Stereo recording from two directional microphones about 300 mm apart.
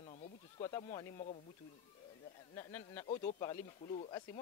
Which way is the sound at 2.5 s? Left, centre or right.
Centre.